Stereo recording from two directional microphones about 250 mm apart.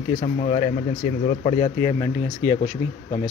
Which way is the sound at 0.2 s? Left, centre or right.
Left.